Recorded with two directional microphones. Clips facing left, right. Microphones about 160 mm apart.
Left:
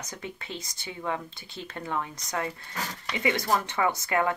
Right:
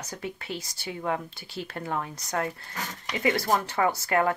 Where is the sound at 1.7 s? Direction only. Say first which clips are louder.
Even; 45° right (ahead or behind).